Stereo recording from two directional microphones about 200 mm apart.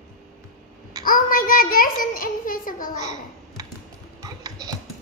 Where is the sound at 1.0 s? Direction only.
45° left (ahead or behind).